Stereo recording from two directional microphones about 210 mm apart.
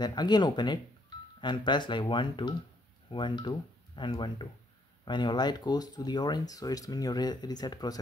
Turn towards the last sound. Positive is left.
turn(degrees=20)  # may be behind; listen again after turning